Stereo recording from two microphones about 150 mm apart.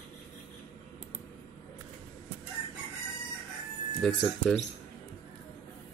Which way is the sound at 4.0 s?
5° left (ahead or behind).